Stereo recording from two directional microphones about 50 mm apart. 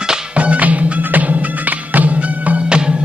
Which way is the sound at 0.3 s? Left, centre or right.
Right.